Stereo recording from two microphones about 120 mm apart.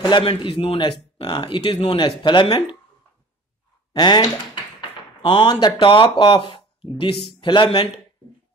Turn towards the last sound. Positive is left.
turn(degrees=45)  # may be behind; listen again after turning